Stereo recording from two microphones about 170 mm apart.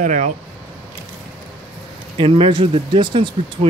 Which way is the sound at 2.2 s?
30° right (ahead or behind).